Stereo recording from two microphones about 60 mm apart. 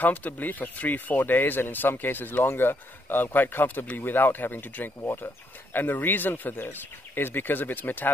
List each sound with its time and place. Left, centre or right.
0.0 s speech: left